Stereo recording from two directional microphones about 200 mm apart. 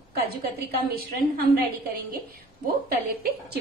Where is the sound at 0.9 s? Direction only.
45° right (ahead or behind).